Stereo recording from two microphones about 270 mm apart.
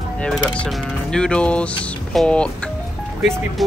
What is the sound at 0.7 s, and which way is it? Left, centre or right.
Speech, centre.